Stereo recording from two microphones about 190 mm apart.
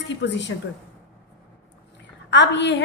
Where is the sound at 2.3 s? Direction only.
65° left (ahead or behind).